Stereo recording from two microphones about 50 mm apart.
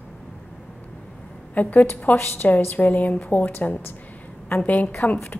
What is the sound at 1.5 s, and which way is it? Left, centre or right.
Speech, left.